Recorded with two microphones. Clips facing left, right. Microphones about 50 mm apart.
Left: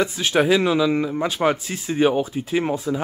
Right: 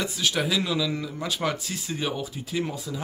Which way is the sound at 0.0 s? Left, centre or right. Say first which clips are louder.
Left 7 dB; left.